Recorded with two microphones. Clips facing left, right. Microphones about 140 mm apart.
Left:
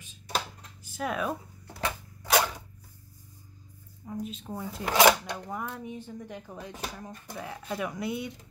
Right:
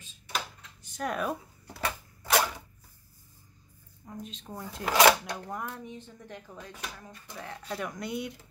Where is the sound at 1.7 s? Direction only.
15° left (ahead or behind).